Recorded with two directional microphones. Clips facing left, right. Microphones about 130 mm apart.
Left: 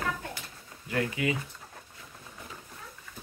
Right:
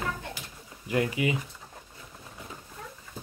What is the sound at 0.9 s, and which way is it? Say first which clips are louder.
Speech: right 3 dB; 20° right (ahead or behind).